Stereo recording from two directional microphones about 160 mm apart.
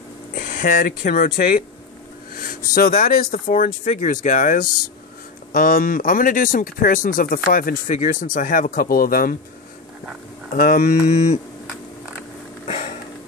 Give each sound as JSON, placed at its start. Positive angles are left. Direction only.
{"t": 0.3, "sound": "speech", "side_deg": 50}
{"t": 10.5, "sound": "mantra", "side_deg": 60}
{"t": 12.6, "sound": "sniff", "side_deg": 45}